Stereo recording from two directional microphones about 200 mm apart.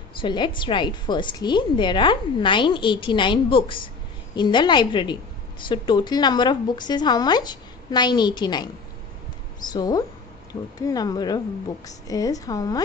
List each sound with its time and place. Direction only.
0.2 s a woman's voice: 25° left (ahead or behind)
9.7 s a woman's voice: 20° left (ahead or behind)